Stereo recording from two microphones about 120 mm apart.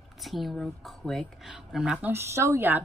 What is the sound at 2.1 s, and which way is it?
Speech, 20° right (ahead or behind).